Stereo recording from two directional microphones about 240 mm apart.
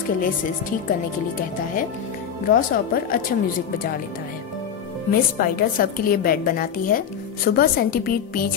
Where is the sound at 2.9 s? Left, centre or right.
Left.